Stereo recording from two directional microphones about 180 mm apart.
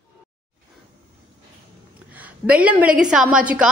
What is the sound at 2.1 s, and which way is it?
A woman's voice, 10° right (ahead or behind).